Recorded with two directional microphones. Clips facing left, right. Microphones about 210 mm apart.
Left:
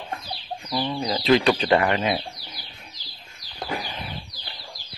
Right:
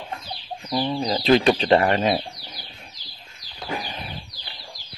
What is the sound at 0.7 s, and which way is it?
Speech, 25° right (ahead or behind).